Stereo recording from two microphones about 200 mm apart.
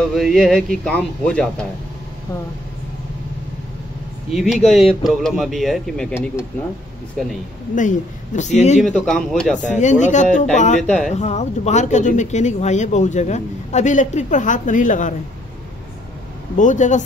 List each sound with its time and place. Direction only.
0.1 s speech: centre (ahead or behind)
4.3 s speech: centre (ahead or behind)
6.1 s speech: 10° left (ahead or behind)
8.4 s speech: 35° left (ahead or behind)
8.8 s speech: 5° left (ahead or behind)
9.6 s speech: 35° left (ahead or behind)
10.8 s speech: 5° left (ahead or behind)
11.1 s speech: 35° left (ahead or behind)
16.5 s speech: 40° left (ahead or behind)